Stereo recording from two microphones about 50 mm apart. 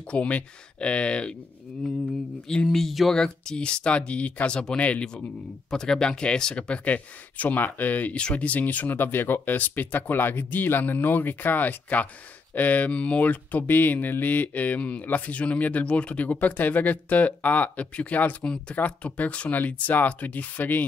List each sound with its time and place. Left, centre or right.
0.1 s speech: left
2.4 s a sound: centre
2.7 s speech: centre
3.2 s speech: centre; by 8.2 s left
8.2 s speech: left
18.4 s speech: centre
18.8 s speech: left